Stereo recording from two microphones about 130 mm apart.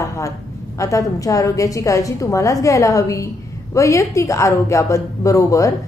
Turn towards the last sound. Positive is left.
turn(degrees=25)  # may be behind; listen again after turning